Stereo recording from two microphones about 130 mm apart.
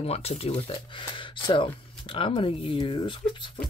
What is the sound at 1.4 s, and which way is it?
Speech, 40° left (ahead or behind).